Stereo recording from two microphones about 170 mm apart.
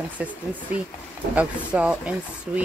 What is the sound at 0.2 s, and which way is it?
Speech, 5° right (ahead or behind).